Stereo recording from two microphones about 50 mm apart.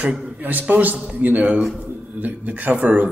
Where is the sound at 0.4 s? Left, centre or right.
Right.